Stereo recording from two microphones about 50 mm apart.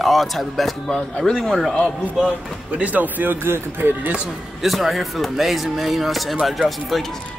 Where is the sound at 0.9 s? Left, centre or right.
Centre.